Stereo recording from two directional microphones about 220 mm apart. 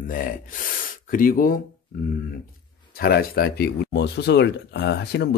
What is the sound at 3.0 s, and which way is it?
Speech, 45° left (ahead or behind).